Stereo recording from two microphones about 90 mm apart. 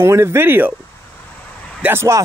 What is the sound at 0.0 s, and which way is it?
Speech, 30° right (ahead or behind).